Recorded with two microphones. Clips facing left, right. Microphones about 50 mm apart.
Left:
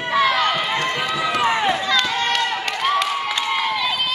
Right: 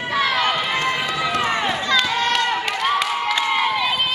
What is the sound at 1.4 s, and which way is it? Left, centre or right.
Crowd, centre.